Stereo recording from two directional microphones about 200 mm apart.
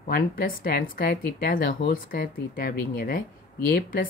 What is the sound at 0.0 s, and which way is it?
A woman's voice, 50° left (ahead or behind).